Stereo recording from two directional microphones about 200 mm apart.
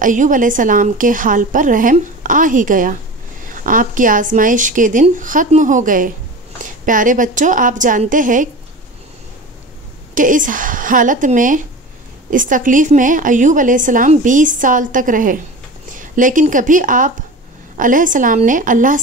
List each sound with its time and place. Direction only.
0.0 s a woman's voice: 40° right (ahead or behind)
10.1 s a woman's voice: 40° right (ahead or behind)